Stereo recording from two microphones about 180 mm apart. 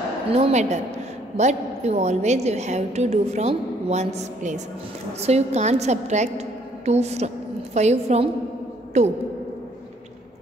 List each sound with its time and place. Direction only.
0.3 s a woman's voice: 35° right (ahead or behind)